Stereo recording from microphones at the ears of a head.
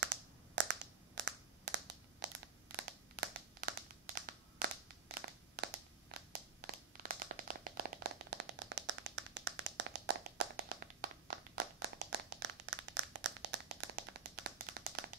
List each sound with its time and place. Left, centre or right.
0.0 s crushing: right